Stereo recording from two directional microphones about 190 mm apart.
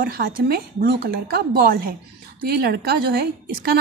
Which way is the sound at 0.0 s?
55° right (ahead or behind).